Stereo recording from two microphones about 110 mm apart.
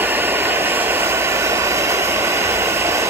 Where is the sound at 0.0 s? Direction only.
20° right (ahead or behind).